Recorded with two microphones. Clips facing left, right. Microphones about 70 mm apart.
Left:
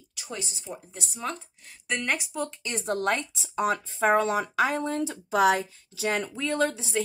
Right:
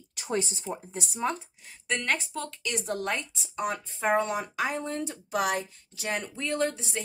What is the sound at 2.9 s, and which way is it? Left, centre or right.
Speech, left.